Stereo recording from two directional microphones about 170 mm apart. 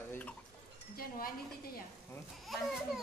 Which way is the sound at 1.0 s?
60° left (ahead or behind).